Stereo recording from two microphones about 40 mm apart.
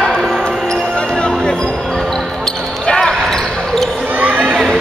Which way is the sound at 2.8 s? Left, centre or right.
Centre.